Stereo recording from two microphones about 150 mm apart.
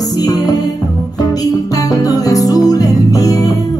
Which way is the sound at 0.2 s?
25° left (ahead or behind).